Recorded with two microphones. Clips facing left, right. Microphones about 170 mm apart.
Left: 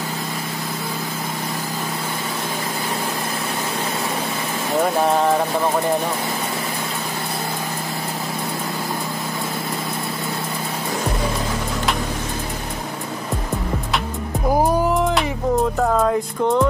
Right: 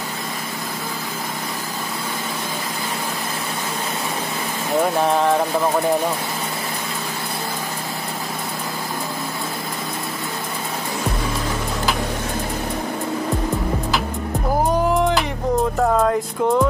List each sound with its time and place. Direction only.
5.0 s music: centre (ahead or behind)
16.0 s music: centre (ahead or behind)